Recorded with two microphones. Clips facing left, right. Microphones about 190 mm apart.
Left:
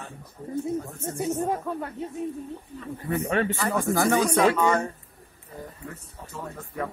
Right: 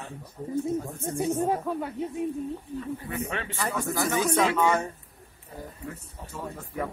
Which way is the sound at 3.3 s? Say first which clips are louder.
Left 9 dB; 45° left (ahead or behind).